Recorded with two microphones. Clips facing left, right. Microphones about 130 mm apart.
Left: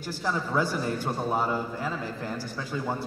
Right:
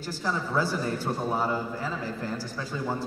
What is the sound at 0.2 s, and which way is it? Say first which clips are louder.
A man's voice: left 1 dB; 10° left (ahead or behind).